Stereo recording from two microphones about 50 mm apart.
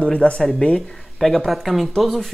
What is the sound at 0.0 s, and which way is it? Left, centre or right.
Speech, left.